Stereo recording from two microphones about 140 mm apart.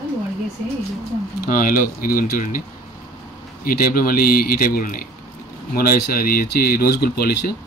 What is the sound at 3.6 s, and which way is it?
Speech, 90° left.